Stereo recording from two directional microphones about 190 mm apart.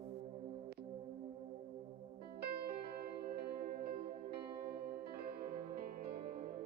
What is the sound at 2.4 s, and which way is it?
Music, 55° right (ahead or behind).